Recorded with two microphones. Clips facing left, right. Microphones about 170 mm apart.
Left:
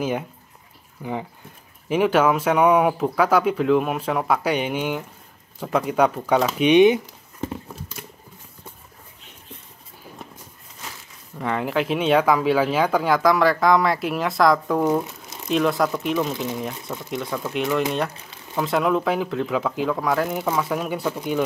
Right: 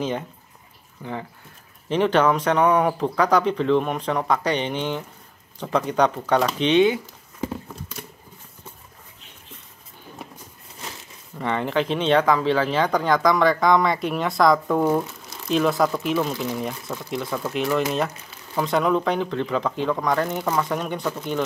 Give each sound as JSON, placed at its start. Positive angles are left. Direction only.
{"t": 1.0, "sound": "speech", "side_deg": 10}
{"t": 11.3, "sound": "speech", "side_deg": 0}